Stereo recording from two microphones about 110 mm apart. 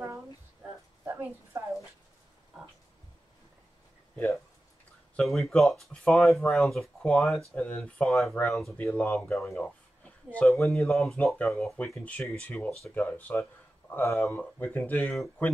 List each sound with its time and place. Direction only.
1.0 s a sound: 20° right (ahead or behind)
5.1 s speech: centre (ahead or behind)
8.7 s speech: 15° left (ahead or behind)
9.3 s speech: 5° left (ahead or behind); by 15.1 s 20° left (ahead or behind)